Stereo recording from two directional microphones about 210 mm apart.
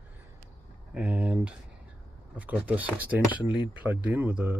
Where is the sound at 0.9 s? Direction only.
5° right (ahead or behind).